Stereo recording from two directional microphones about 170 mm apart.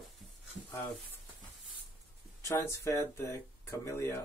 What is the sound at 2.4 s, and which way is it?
Speech, 20° left (ahead or behind).